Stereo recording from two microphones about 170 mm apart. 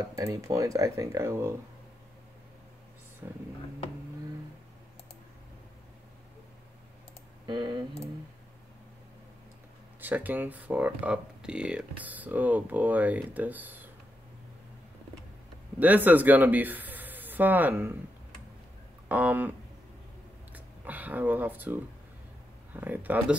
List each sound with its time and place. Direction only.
0.1 s speech: 20° right (ahead or behind)
3.2 s speech: 15° right (ahead or behind)
7.4 s speech: 25° right (ahead or behind)
9.9 s speech: 10° right (ahead or behind)
15.8 s speech: 10° right (ahead or behind)
19.0 s speech: 10° right (ahead or behind)
20.5 s speech: 10° right (ahead or behind)
22.8 s speech: 10° right (ahead or behind)